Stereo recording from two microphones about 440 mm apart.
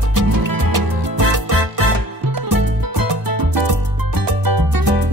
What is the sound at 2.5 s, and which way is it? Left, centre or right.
Music, right.